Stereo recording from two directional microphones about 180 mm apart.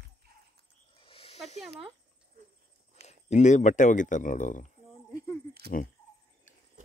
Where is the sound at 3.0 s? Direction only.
40° left (ahead or behind).